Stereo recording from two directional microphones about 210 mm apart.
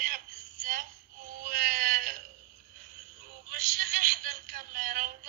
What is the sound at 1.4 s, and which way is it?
Wail, 40° right (ahead or behind).